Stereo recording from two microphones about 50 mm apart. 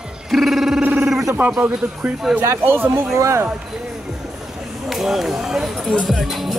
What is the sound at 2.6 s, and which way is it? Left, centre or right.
Speech, right.